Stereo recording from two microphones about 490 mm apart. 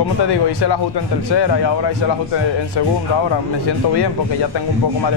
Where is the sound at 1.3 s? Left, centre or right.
Left.